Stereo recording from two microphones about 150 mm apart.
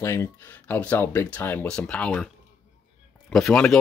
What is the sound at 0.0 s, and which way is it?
Speech, 20° left (ahead or behind).